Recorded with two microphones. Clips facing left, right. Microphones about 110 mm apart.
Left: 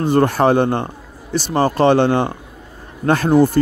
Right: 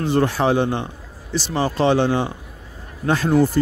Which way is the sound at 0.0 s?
50° left (ahead or behind).